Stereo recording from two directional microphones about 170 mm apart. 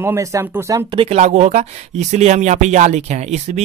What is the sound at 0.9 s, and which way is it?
Speech, 40° right (ahead or behind).